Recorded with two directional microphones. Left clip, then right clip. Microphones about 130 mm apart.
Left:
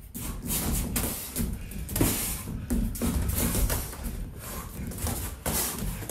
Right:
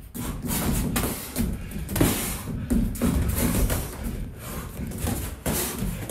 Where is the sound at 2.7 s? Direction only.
Centre (ahead or behind).